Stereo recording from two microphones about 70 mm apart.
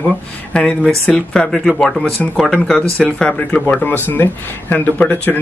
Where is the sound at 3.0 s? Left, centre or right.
Centre.